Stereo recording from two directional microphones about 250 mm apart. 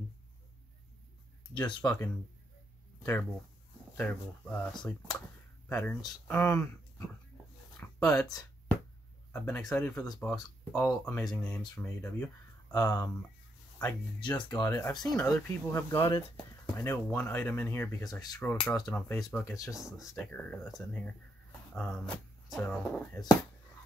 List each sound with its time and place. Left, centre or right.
1.8 s speech: centre
3.0 s a sound: centre
3.9 s speech: centre
7.7 s a sound: centre
9.3 s speech: centre
19.7 s speech: centre